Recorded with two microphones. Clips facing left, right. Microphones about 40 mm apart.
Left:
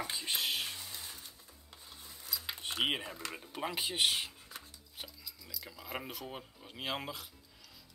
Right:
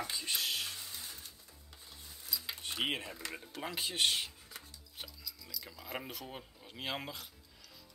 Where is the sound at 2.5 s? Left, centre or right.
Left.